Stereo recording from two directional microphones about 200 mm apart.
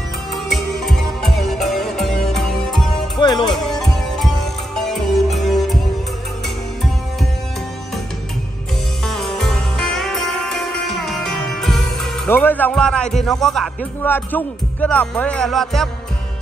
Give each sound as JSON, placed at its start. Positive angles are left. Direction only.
{"t": 0.3, "sound": "music", "side_deg": 0}
{"t": 3.2, "sound": "music", "side_deg": 20}
{"t": 3.5, "sound": "music", "side_deg": 0}
{"t": 9.0, "sound": "music", "side_deg": 0}
{"t": 12.3, "sound": "a man's voice", "side_deg": 10}